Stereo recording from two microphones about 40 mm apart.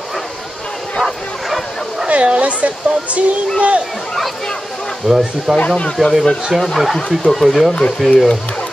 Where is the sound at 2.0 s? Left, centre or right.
Right.